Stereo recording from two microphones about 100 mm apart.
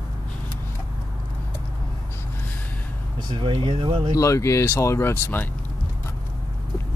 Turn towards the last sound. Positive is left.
turn(degrees=25)  # may be behind; listen again after turning